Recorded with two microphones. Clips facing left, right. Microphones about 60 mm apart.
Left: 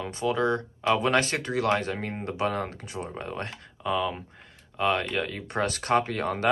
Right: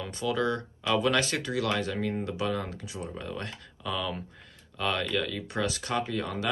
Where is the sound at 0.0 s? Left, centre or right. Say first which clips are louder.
Left 3 dB; left.